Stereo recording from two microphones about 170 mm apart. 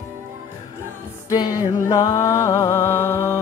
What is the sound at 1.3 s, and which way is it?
Music, 20° left (ahead or behind).